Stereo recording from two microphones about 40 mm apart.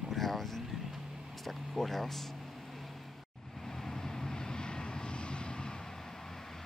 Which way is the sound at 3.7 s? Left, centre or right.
Centre.